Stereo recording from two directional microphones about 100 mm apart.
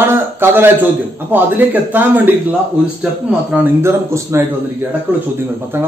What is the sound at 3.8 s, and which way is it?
Speech, 25° right (ahead or behind).